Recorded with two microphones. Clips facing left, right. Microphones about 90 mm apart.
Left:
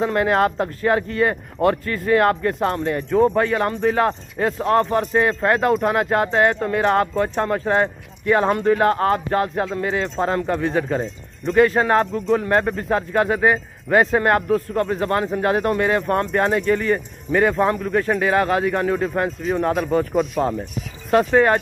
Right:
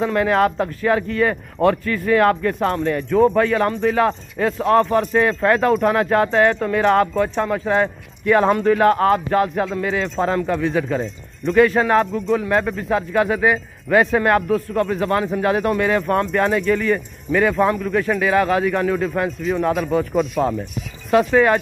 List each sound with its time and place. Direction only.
0.0 s speech: 30° left (ahead or behind)
7.3 s speech: 40° left (ahead or behind)
7.8 s speech: 25° left (ahead or behind)
10.6 s speech: 40° left (ahead or behind)
20.4 s speech: 5° left (ahead or behind)
21.1 s speech: 35° left (ahead or behind)